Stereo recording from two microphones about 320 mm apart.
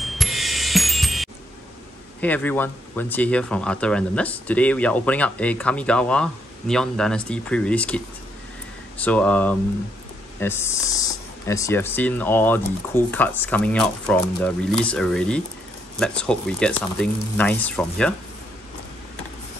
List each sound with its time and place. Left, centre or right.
0.0 s music: centre
2.1 s speech: centre